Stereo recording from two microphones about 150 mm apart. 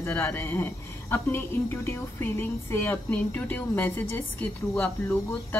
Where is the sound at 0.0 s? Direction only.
15° left (ahead or behind).